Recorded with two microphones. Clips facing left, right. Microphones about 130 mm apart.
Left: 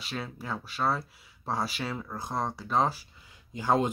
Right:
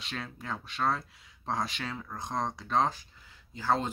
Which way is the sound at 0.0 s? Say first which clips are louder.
Left 3 dB; 5° left (ahead or behind).